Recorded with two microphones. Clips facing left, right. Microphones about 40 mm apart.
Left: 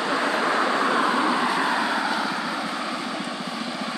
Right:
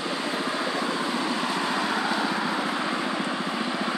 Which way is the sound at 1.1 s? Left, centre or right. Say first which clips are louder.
Left 5 dB; left.